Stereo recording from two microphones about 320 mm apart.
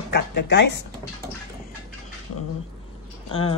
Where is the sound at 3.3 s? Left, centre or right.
Centre.